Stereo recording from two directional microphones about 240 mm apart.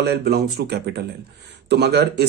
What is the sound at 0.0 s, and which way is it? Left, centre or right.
Speech, right.